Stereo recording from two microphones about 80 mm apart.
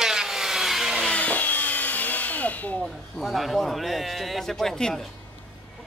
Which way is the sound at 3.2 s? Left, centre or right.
Centre.